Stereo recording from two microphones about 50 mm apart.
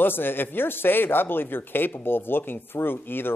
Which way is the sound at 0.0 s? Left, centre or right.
Left.